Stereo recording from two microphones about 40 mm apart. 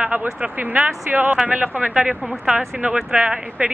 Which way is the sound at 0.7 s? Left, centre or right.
Right.